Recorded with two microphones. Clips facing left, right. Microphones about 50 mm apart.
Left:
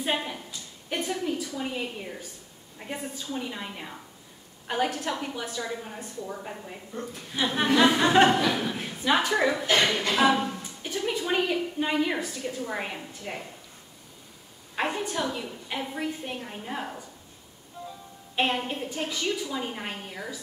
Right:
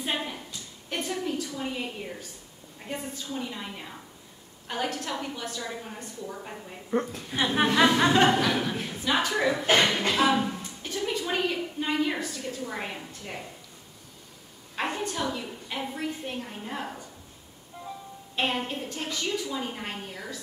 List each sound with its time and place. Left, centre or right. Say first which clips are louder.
0.1 s a sound: left 2 dB; centre
1.5 s a woman's voice: left 1 dB; centre
6.9 s a woman's voice: right 10 dB; right
7.5 s speech: even; centre
8.1 s a woman's voice: left 2 dB; centre
8.5 s speech: even; centre
8.7 s a woman's voice: left 2 dB; centre
9.7 s speech: right 3 dB; right
10.3 s a sound: right 1 dB; centre
10.9 s a woman's voice: left 2 dB; centre
14.8 s a woman's voice: left 1 dB; centre
18.3 s a woman's voice: left 2 dB; centre